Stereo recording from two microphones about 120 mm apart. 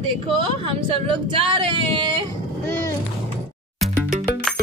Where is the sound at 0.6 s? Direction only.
45° right (ahead or behind).